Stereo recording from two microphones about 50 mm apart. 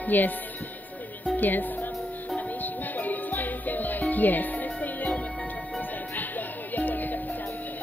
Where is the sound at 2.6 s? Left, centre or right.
Left.